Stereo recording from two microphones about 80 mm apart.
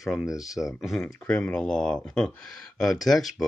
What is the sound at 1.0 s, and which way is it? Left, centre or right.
Speech, centre.